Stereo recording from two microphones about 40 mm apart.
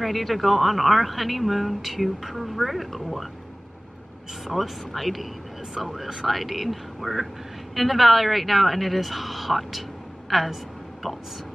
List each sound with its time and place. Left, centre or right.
0.0 s a woman's voice: centre
4.5 s a woman's voice: centre